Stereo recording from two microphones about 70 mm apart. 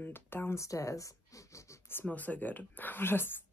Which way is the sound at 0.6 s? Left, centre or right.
Left.